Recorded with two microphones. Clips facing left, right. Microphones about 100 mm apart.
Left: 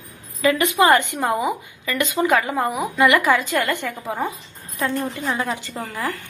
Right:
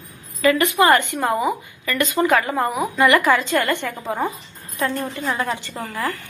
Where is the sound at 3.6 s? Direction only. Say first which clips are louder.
Right 1 dB; 20° right (ahead or behind).